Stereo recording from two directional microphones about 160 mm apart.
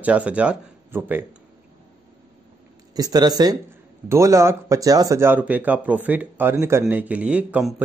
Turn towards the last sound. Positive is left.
turn(degrees=-10)  # may be behind; listen again after turning